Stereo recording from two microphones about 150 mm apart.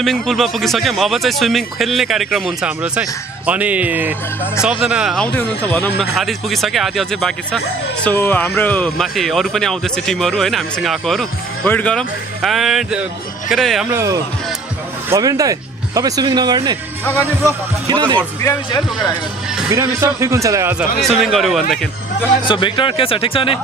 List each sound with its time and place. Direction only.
0.0 s speech: centre (ahead or behind)
6.1 s speech: centre (ahead or behind)
8.0 s speech: 15° left (ahead or behind)
13.8 s speech: 20° right (ahead or behind)
17.8 s speech: 30° right (ahead or behind)
18.7 s speech: 30° left (ahead or behind)
19.7 s speech: 20° right (ahead or behind)
21.0 s speech: centre (ahead or behind)
22.5 s speech: 35° left (ahead or behind)